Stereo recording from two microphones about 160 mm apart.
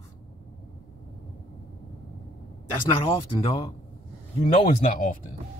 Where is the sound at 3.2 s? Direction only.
30° left (ahead or behind).